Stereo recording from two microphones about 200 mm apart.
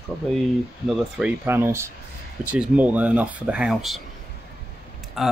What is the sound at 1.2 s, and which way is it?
Speech, 10° right (ahead or behind).